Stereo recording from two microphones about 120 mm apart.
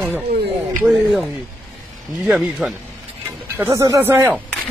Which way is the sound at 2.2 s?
5° right (ahead or behind).